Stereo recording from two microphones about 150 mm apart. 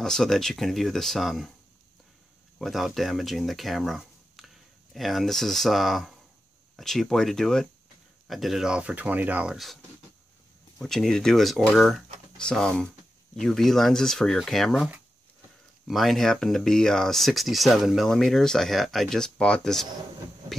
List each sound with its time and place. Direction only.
0.0 s speech: 5° left (ahead or behind)
2.6 s speech: centre (ahead or behind)
10.8 s speech: 5° left (ahead or behind)